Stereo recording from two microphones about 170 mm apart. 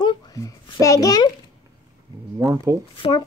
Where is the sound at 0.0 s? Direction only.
25° left (ahead or behind).